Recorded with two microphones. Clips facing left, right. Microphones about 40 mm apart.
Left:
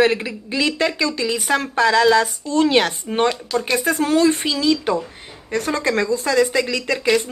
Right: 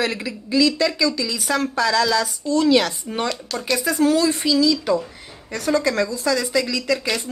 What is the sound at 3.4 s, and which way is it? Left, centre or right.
Speech, left.